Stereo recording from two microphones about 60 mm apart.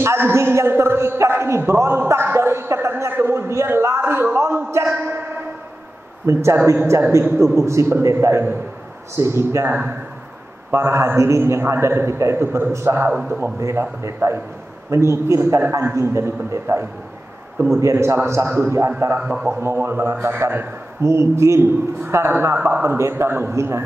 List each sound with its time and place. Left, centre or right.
0.0 s a sound: right
4.9 s a sound: right
6.2 s a man's voice: right
9.7 s speech: right
10.7 s a man's voice: right
19.1 s speech: centre
19.6 s a man's voice: right
22.6 s speech: right
22.8 s a man's voice: right